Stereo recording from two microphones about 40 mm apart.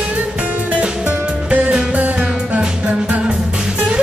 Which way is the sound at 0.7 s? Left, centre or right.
Right.